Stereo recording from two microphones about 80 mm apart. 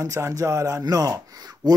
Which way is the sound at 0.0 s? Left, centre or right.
Right.